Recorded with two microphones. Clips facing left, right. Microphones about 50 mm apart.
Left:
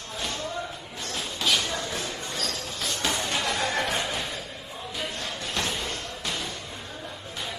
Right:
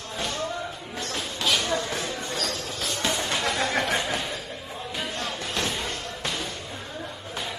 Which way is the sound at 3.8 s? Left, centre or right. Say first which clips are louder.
Right 2 dB; centre.